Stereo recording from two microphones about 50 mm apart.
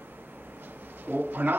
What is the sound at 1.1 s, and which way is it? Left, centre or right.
Speech, right.